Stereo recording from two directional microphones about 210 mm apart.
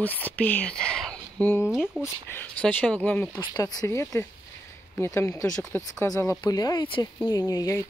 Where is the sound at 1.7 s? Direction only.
5° right (ahead or behind).